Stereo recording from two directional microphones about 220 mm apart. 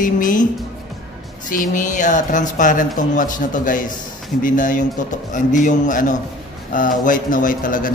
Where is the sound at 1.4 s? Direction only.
35° left (ahead or behind).